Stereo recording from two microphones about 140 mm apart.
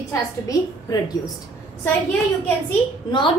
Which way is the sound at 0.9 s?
30° left (ahead or behind).